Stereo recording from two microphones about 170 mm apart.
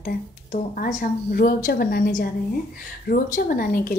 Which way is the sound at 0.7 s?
55° left (ahead or behind).